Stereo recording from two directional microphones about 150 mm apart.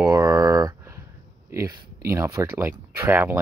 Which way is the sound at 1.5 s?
20° right (ahead or behind).